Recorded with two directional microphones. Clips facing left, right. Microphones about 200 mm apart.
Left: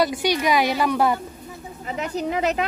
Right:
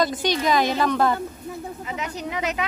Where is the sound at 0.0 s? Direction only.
10° left (ahead or behind).